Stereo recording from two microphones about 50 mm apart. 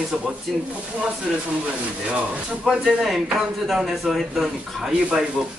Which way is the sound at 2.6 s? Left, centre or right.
Centre.